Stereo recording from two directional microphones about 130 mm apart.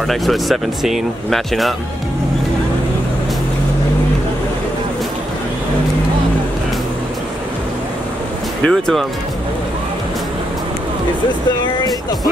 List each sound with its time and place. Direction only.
0.1 s speech: centre (ahead or behind)
8.6 s speech: 5° left (ahead or behind)